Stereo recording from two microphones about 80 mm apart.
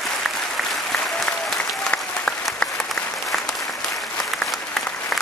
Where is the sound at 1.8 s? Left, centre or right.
Centre.